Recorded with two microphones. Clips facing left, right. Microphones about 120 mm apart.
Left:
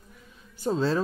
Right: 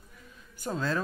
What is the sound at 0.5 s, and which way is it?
Speech, 25° left (ahead or behind).